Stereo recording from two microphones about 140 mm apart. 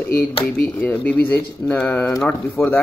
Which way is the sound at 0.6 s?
10° left (ahead or behind).